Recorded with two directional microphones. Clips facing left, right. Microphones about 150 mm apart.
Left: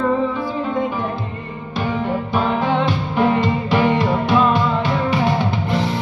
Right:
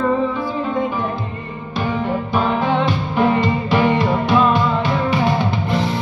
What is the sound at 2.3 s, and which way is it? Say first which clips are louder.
Music: right 1 dB; 35° right (ahead or behind).